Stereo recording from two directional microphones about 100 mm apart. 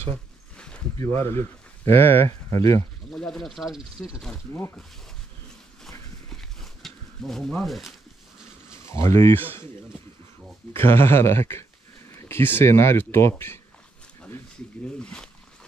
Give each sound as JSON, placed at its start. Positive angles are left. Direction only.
{"t": 0.1, "sound": "a sound", "side_deg": 10}
{"t": 0.9, "sound": "speech", "side_deg": 25}
{"t": 3.1, "sound": "speech", "side_deg": 5}
{"t": 4.5, "sound": "speech", "side_deg": 25}
{"t": 5.9, "sound": "a sound", "side_deg": 5}
{"t": 7.6, "sound": "speech", "side_deg": 0}
{"t": 8.8, "sound": "speech", "side_deg": 30}
{"t": 10.7, "sound": "speech", "side_deg": 25}
{"t": 15.0, "sound": "speech", "side_deg": 10}